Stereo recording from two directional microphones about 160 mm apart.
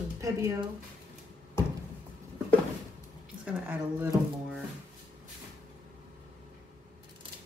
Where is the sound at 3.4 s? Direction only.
10° right (ahead or behind).